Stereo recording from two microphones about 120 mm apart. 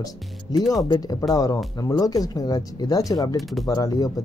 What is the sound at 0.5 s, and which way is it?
Speech, 35° left (ahead or behind).